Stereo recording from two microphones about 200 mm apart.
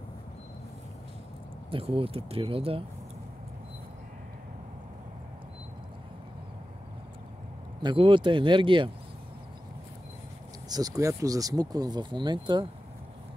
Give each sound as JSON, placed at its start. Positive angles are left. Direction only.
{"t": 1.7, "sound": "speech", "side_deg": -25}
{"t": 7.8, "sound": "speech", "side_deg": -25}
{"t": 10.7, "sound": "speech", "side_deg": -20}